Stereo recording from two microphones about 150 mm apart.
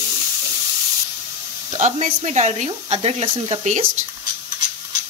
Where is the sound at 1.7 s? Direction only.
50° right (ahead or behind).